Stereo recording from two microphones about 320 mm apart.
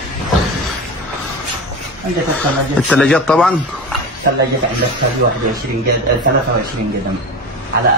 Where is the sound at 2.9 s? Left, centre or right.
Centre.